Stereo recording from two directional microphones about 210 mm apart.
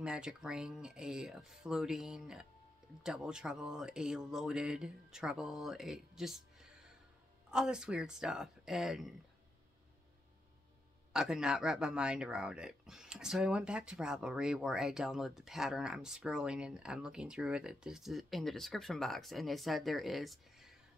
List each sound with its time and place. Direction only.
0.0 s speech: 5° right (ahead or behind)
11.1 s speech: 5° right (ahead or behind)